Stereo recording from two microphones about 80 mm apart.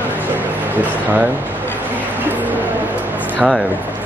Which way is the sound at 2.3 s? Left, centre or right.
Right.